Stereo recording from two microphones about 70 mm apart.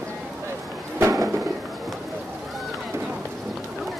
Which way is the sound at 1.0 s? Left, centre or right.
Right.